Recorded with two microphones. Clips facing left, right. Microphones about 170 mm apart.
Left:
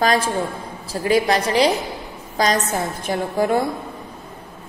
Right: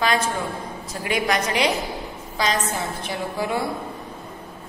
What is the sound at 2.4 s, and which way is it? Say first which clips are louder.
Mantra: left 4 dB; 45° left (ahead or behind).